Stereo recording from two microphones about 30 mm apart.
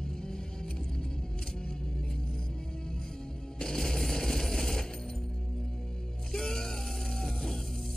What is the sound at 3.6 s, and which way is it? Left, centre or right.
Music, centre.